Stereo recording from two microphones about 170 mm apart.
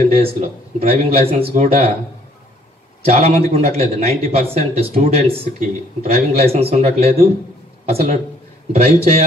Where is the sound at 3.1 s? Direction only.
40° right (ahead or behind).